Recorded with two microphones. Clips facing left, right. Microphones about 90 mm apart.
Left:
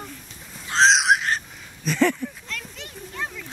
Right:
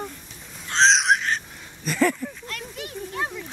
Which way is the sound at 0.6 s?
5° left (ahead or behind).